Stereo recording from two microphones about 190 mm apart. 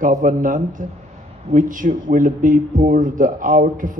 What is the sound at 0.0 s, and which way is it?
Speech, 45° right (ahead or behind).